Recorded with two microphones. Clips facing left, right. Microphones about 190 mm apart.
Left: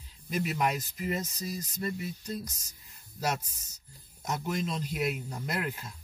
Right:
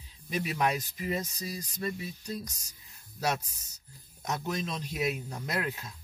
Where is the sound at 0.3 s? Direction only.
Centre (ahead or behind).